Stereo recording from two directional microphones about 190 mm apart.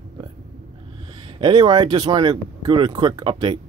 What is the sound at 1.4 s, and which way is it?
Speech, 25° right (ahead or behind).